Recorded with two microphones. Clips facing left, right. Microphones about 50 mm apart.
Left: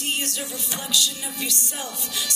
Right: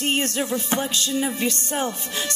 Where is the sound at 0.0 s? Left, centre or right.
Right.